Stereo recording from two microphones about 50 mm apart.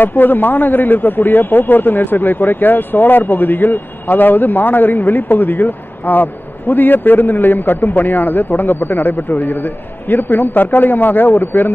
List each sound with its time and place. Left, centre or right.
0.0 s a man's voice: left